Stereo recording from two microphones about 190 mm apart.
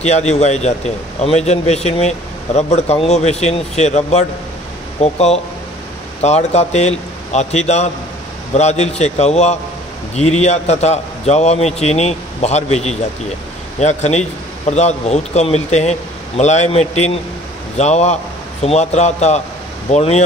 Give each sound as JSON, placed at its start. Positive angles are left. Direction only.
{"t": 0.0, "sound": "a man's voice", "side_deg": 35}